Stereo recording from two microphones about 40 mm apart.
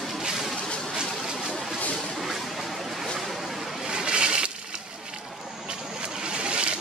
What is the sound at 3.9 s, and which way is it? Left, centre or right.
Vehicle, right.